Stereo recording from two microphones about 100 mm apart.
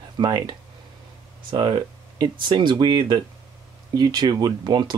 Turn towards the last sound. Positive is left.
turn(degrees=-45)  # may be behind; listen again after turning